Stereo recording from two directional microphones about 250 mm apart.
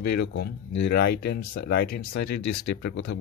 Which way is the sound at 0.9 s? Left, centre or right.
Left.